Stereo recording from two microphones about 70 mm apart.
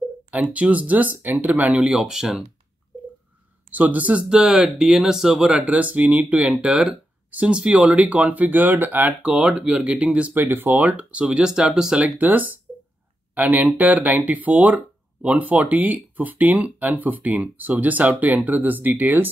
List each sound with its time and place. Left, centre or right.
0.3 s speech: right
3.7 s speech: right
9.2 s speech: centre
10.5 s speech: right
10.8 s speech: centre
12.2 s speech: right